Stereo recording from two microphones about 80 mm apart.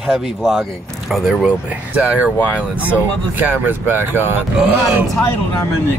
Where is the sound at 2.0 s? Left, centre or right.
Centre.